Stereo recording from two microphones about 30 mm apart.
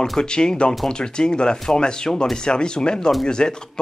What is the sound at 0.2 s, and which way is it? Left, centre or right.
Speech, left.